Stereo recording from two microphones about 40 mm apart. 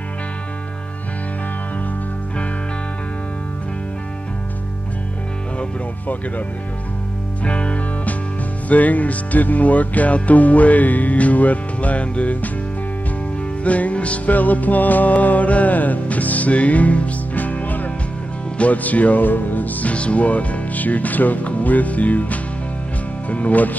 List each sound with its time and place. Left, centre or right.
7.4 s music: left
13.7 s music: left
18.6 s speech: left